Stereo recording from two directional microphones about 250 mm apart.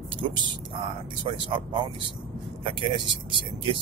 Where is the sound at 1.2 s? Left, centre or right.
Centre.